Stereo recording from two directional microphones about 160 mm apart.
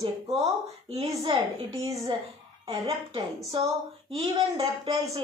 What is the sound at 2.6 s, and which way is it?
Speech, 30° right (ahead or behind).